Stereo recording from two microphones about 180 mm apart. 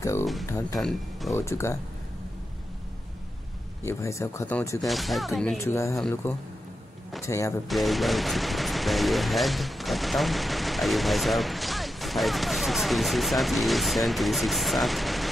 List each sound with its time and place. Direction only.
0.0 s speech: 15° left (ahead or behind)
0.7 s speech: centre (ahead or behind)
1.3 s speech: 15° left (ahead or behind)
3.8 s speech: 15° left (ahead or behind); by 5.6 s centre (ahead or behind)
5.6 s speech: 15° left (ahead or behind)
5.9 s speech: 5° left (ahead or behind)
7.2 s speech: 15° left (ahead or behind)
7.6 s speech: centre (ahead or behind)